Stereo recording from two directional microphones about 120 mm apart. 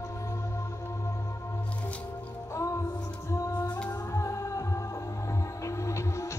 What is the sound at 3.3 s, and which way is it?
Music, 25° left (ahead or behind).